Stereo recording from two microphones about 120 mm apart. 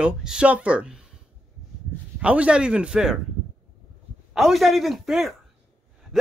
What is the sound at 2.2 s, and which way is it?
A man's voice, 10° right (ahead or behind).